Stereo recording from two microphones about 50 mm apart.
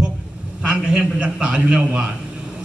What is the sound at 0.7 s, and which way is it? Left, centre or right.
A man's voice, centre.